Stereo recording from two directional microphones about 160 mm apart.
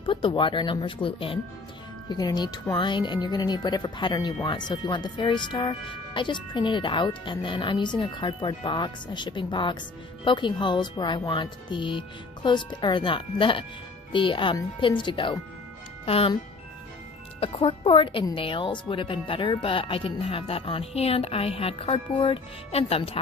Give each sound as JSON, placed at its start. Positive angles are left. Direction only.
{"t": 0.0, "sound": "speech", "side_deg": 30}
{"t": 17.4, "sound": "speech", "side_deg": 35}